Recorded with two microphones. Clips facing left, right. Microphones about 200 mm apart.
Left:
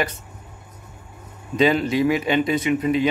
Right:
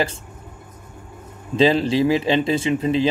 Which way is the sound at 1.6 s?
30° right (ahead or behind).